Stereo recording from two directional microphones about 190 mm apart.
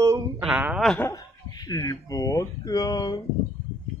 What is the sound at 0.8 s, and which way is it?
Speech, 10° left (ahead or behind).